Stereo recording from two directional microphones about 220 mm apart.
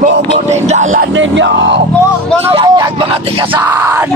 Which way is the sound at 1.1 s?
55° right (ahead or behind).